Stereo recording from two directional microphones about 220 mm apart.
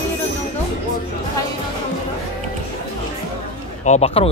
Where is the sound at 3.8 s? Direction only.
30° left (ahead or behind).